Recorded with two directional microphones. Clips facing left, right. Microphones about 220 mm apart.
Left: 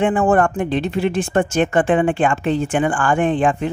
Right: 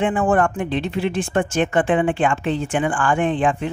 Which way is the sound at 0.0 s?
40° left (ahead or behind).